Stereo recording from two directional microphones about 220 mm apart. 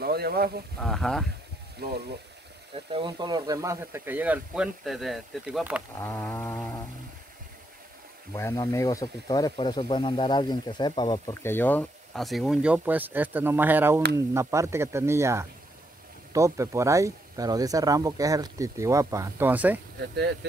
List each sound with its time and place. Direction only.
0.0 s speech: 45° right (ahead or behind)
0.7 s speech: centre (ahead or behind)
1.8 s speech: 45° right (ahead or behind)
2.7 s speech: 25° right (ahead or behind); by 5.8 s 5° right (ahead or behind)
5.9 s speech: 10° left (ahead or behind)
8.4 s speech: 15° left (ahead or behind); by 19.8 s 10° right (ahead or behind)
20.0 s speech: 50° right (ahead or behind)